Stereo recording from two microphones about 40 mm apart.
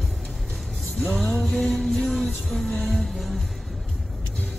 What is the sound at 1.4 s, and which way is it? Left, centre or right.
Music, centre.